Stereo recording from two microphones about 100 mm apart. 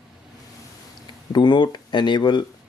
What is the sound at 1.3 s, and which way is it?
Speech, 50° left (ahead or behind).